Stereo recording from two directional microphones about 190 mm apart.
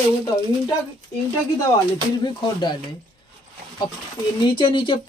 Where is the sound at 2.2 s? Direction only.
20° left (ahead or behind).